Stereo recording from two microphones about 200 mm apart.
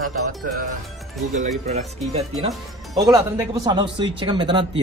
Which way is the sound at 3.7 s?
20° right (ahead or behind).